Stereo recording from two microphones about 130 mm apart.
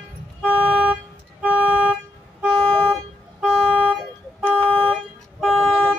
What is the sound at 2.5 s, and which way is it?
Car, 5° left (ahead or behind).